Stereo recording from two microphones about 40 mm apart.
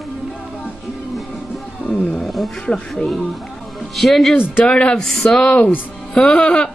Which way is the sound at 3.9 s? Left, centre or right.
Centre.